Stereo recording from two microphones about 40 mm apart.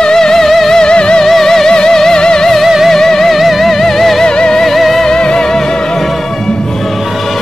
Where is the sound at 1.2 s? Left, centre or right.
Centre.